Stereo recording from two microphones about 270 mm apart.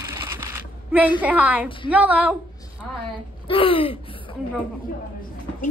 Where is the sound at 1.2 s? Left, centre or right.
Centre.